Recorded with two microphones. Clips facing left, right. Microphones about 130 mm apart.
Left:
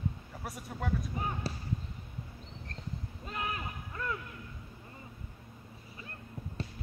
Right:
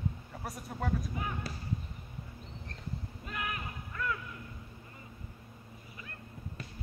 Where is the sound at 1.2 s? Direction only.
30° left (ahead or behind).